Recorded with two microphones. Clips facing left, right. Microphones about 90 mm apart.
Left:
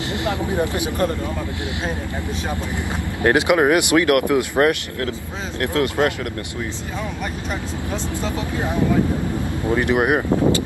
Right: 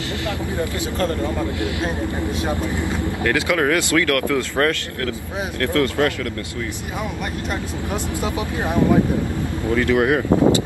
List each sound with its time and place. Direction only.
0.6 s speech: 20° left (ahead or behind)
3.3 s speech: 20° left (ahead or behind)
7.9 s speech: 15° right (ahead or behind)
9.7 s speech: 20° left (ahead or behind)